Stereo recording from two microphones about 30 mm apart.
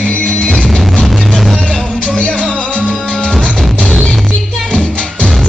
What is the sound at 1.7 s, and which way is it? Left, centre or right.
Music, left.